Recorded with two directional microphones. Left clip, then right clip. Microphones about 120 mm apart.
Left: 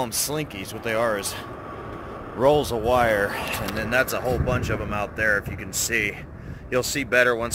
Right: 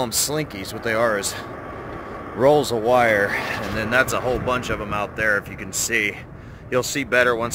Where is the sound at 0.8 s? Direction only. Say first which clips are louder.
Right 3 dB; 5° right (ahead or behind).